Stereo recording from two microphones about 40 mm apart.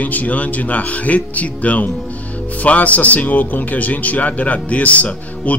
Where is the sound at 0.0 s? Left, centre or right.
Left.